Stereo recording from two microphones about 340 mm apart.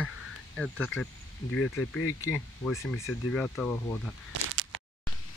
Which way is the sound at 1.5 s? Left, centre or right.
Left.